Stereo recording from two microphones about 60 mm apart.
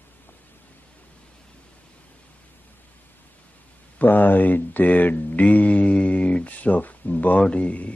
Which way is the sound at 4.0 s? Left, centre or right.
Left.